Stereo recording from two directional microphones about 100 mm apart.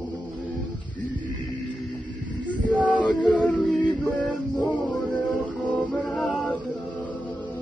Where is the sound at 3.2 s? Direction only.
10° left (ahead or behind).